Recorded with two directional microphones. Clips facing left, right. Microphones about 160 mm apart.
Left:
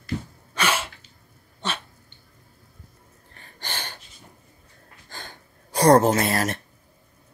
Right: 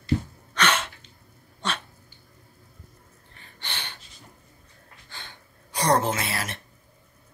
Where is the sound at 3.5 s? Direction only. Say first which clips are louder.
Left 3 dB; 40° left (ahead or behind).